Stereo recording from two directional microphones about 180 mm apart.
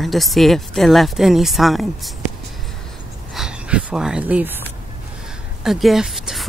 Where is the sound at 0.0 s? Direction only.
Centre (ahead or behind).